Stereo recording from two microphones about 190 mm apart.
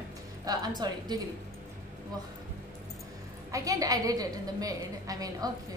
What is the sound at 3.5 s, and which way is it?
A woman's voice, 15° right (ahead or behind).